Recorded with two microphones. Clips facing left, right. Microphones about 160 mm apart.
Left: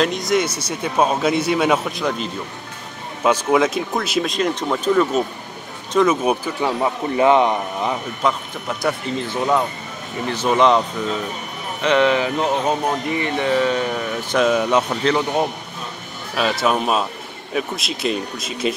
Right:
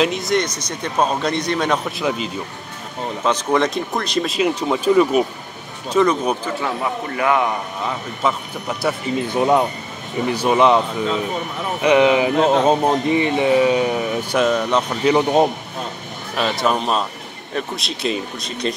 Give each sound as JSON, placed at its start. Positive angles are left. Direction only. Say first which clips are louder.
{"t": 0.0, "sound": "speech", "louder": "even", "side_deg": 0}
{"t": 2.0, "sound": "speech", "louder": "right 1 dB", "side_deg": -5}
{"t": 5.9, "sound": "speech", "louder": "even", "side_deg": 5}
{"t": 6.8, "sound": "a man's voice", "louder": "left 4 dB", "side_deg": 25}
{"t": 8.2, "sound": "speech", "louder": "right 3 dB", "side_deg": -5}
{"t": 9.3, "sound": "a man's voice", "louder": "right 3 dB", "side_deg": -20}
{"t": 11.8, "sound": "speech", "louder": "right 3 dB", "side_deg": -15}
{"t": 12.6, "sound": "speech", "louder": "right 4 dB", "side_deg": -25}
{"t": 14.4, "sound": "speech", "louder": "left 2 dB", "side_deg": 5}
{"t": 15.0, "sound": "a man's voice", "louder": "right 4 dB", "side_deg": -20}
{"t": 16.3, "sound": "speech", "louder": "even", "side_deg": 0}